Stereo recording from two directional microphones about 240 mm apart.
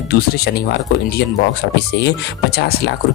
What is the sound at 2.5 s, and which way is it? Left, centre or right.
Speech, left.